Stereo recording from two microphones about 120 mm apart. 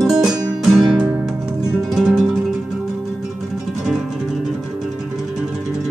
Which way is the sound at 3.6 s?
5° right (ahead or behind).